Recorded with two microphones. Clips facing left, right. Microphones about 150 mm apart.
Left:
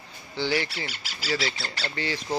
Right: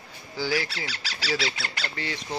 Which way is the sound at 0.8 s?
90° right.